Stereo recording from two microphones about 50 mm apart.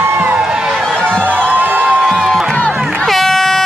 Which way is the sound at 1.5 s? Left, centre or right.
Right.